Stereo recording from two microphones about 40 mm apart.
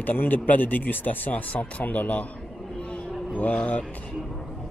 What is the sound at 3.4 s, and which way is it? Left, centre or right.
Speech, left.